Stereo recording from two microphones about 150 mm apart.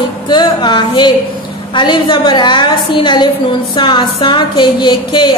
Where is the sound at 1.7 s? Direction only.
30° left (ahead or behind).